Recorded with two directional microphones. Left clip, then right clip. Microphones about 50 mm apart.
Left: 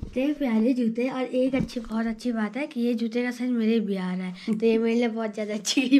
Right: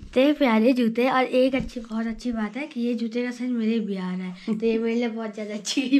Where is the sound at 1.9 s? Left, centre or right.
Centre.